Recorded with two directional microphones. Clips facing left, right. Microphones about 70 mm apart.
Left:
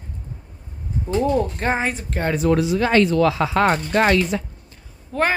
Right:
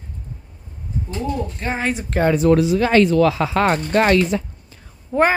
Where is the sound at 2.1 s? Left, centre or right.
Right.